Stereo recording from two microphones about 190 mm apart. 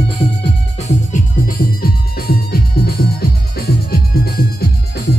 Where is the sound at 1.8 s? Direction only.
55° left (ahead or behind).